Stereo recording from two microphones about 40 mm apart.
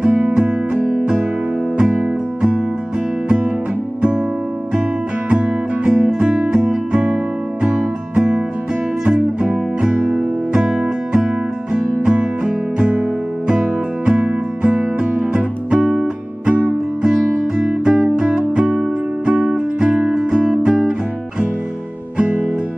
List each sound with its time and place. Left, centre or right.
0.2 s music: centre
1.8 s music: right
5.3 s music: right
12.0 s music: right
14.0 s music: right
18.2 s music: right
18.7 s music: right
19.4 s music: centre
20.4 s guitar: right